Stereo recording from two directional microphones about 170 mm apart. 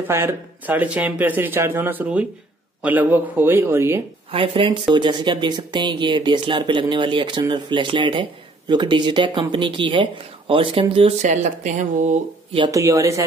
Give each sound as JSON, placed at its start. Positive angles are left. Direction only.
{"t": 0.1, "sound": "speech", "side_deg": -15}
{"t": 4.3, "sound": "speech", "side_deg": -30}
{"t": 12.5, "sound": "speech", "side_deg": -20}